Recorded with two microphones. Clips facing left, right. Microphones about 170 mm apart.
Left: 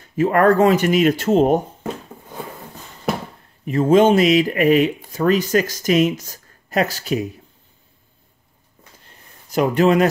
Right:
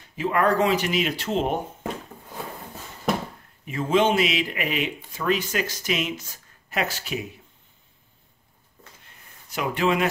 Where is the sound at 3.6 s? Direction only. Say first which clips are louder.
Left 8 dB; 40° left (ahead or behind).